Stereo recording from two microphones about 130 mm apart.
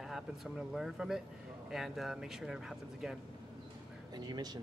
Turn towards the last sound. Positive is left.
turn(degrees=-30)  # may be behind; listen again after turning